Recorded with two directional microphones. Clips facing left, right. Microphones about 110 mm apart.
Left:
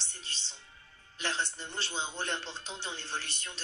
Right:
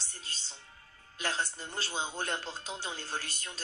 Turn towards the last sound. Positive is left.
turn(degrees=-40)  # may be behind; listen again after turning